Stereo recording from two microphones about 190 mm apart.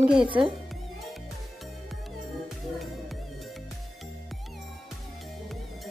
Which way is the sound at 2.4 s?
Centre (ahead or behind).